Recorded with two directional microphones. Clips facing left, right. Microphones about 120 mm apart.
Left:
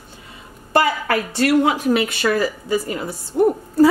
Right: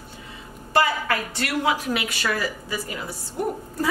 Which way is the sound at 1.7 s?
25° left (ahead or behind).